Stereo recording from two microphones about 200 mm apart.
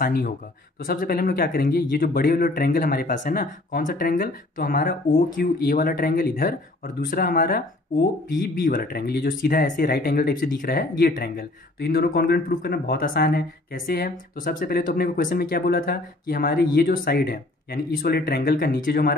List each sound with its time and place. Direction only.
0.0 s speech: 45° left (ahead or behind)